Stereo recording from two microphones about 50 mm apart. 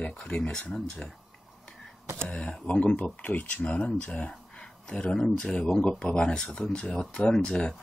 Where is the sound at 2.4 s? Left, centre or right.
Left.